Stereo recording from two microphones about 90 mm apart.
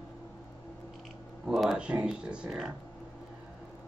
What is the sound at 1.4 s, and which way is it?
Speech, 5° right (ahead or behind).